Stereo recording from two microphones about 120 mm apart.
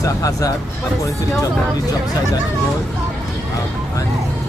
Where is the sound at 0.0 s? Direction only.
30° left (ahead or behind).